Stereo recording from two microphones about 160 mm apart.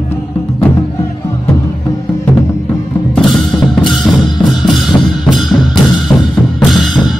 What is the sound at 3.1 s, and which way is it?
Music, centre (ahead or behind).